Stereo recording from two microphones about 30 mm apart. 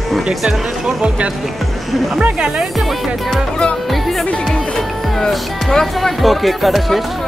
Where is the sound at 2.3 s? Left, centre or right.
Right.